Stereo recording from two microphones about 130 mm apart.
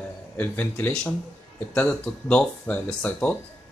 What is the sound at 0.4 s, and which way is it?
Speech, 15° left (ahead or behind).